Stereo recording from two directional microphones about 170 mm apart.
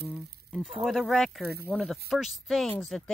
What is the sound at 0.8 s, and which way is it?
Speech, centre (ahead or behind).